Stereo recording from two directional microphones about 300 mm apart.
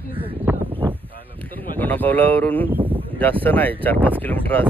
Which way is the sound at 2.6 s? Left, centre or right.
Centre.